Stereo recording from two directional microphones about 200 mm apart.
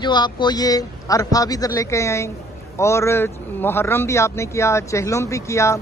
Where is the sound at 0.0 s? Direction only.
20° left (ahead or behind).